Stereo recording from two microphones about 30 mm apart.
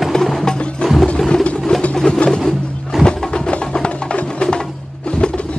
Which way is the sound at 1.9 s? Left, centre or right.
Left.